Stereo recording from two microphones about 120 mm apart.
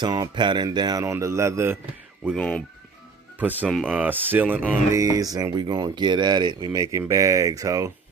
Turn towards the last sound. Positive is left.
turn(degrees=-30)  # may be behind; listen again after turning